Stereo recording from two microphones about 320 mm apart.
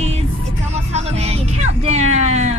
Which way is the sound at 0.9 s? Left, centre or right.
Centre.